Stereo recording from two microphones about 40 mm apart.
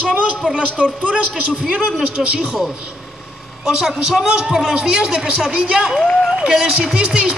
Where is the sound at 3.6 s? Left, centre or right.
Centre.